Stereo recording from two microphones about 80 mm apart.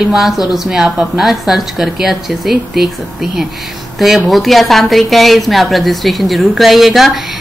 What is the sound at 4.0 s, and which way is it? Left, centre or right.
A woman's voice, centre.